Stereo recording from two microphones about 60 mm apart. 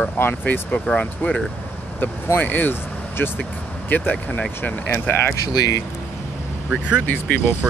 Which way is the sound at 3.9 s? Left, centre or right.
Left.